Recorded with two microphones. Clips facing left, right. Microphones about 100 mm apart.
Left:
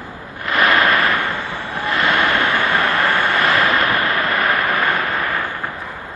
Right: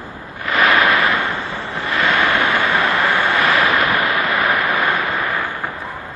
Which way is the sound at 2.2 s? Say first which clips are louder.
Right 1 dB; 15° right (ahead or behind).